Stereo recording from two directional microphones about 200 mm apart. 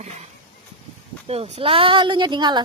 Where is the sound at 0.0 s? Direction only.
35° right (ahead or behind).